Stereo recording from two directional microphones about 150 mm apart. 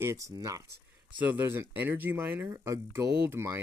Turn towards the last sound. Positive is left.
turn(degrees=-15)  # may be behind; listen again after turning